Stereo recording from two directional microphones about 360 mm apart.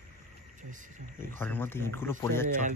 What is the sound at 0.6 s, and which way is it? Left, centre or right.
Speech, right.